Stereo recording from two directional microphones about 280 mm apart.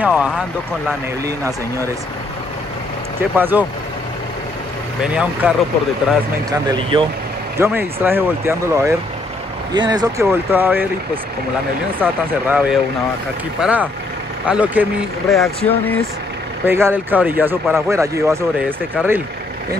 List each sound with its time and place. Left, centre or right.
0.0 s vehicle: centre
0.8 s speech: centre
3.2 s speech: centre
5.0 s speech: centre
6.7 s speech: centre
12.0 s speech: centre